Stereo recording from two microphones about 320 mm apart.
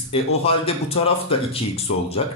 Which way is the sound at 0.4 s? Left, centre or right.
Centre.